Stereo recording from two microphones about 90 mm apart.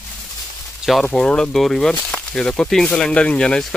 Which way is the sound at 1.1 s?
10° left (ahead or behind).